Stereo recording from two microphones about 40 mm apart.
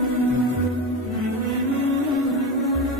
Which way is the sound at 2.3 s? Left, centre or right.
Centre.